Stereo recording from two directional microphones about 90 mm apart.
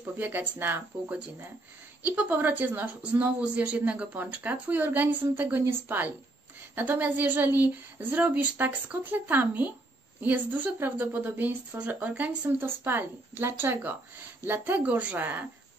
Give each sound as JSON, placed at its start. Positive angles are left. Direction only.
{"t": 0.2, "sound": "speech", "side_deg": -20}
{"t": 12.4, "sound": "speech", "side_deg": -25}